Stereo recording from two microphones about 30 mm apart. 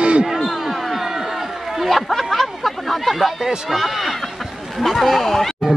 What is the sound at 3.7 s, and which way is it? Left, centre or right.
Speech, centre.